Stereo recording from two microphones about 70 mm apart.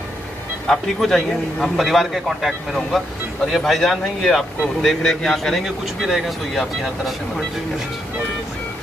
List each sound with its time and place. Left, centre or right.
0.7 s speech: centre